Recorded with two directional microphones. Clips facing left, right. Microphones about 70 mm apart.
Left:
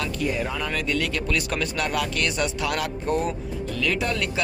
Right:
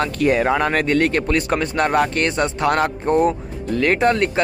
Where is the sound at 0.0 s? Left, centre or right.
Right.